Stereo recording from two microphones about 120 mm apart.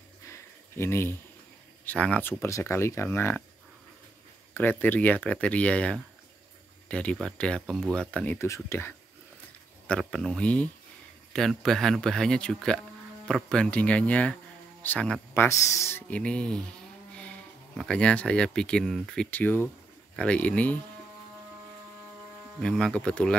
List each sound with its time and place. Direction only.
0.2 s a sound: 25° left (ahead or behind)
1.9 s speech: 10° left (ahead or behind)
2.4 s speech: 25° left (ahead or behind)
4.6 s speech: 15° left (ahead or behind)
8.4 s speech: 25° left (ahead or behind)
9.8 s speech: 5° left (ahead or behind); by 16.0 s 25° left (ahead or behind)
16.1 s speech: 10° left (ahead or behind)
22.6 s speech: 5° left (ahead or behind)